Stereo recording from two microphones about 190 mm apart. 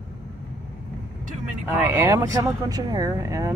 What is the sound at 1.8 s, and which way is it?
Speech, 15° right (ahead or behind).